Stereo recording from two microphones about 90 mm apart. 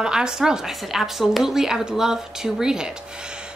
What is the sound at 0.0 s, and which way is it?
A woman's voice, 10° right (ahead or behind).